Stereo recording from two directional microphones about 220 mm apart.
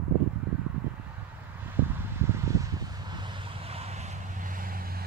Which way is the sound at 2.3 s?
15° right (ahead or behind).